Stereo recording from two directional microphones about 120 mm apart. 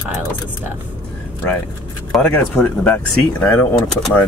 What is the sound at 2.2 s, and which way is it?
Speech, 10° left (ahead or behind).